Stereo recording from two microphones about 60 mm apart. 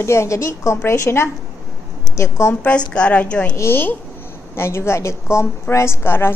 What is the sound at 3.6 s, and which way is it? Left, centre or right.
A woman's voice, left.